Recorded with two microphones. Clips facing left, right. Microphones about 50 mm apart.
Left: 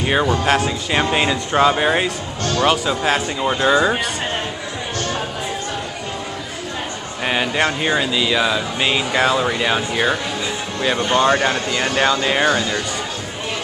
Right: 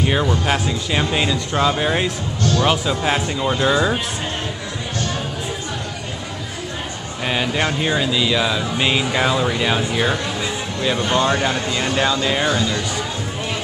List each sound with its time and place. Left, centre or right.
0.0 s speech: centre
2.6 s speech: centre
7.2 s speech: centre